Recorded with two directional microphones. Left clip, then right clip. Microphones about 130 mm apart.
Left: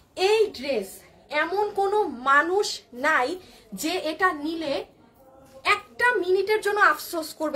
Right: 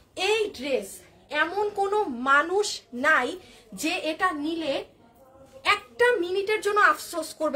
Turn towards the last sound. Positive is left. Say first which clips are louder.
# even
turn(degrees=-25)  # may be behind; listen again after turning